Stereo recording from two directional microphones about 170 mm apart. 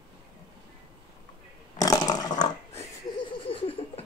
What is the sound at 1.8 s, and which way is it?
Roar, 20° left (ahead or behind).